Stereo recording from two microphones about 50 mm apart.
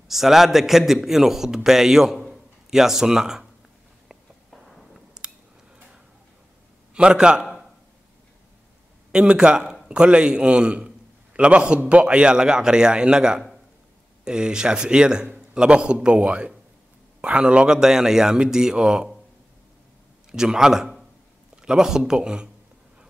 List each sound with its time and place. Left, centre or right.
0.1 s a man's voice: centre
4.1 s a sound: centre
6.9 s a man's voice: centre
9.1 s a man's voice: centre
17.7 s a man's voice: centre
20.2 s a man's voice: centre